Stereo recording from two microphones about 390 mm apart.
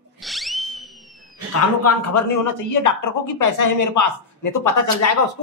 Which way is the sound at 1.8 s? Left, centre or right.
Left.